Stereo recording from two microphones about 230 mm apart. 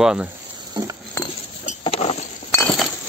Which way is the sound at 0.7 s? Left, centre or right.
Centre.